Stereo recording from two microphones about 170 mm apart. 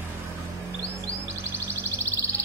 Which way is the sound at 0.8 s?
15° right (ahead or behind).